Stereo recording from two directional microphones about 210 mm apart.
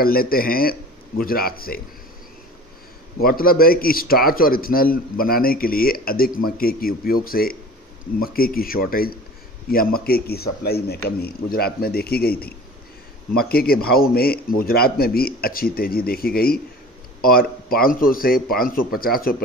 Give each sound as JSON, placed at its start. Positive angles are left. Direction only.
{"t": 0.0, "sound": "a man's voice", "side_deg": 45}
{"t": 3.2, "sound": "a man's voice", "side_deg": 45}